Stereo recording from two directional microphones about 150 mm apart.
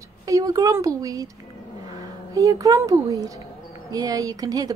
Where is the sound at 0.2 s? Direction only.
25° right (ahead or behind).